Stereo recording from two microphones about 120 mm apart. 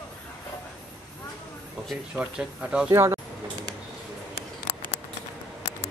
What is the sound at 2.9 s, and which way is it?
Speech, 25° right (ahead or behind).